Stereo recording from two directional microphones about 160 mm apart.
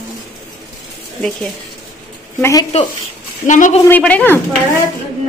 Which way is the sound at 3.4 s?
50° left (ahead or behind).